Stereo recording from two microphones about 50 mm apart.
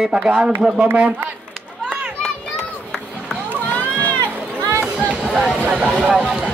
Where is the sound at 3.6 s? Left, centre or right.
Left.